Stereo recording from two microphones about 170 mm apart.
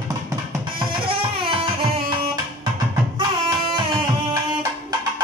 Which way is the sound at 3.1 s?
25° right (ahead or behind).